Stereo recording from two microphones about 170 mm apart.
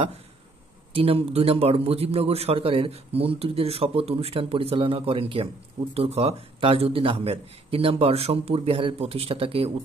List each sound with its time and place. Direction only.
0.9 s a man's voice: 35° right (ahead or behind)